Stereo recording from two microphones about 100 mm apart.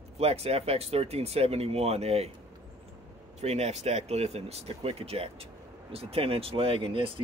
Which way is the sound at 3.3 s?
90° right.